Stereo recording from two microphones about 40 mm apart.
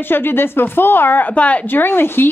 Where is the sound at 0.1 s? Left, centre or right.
Left.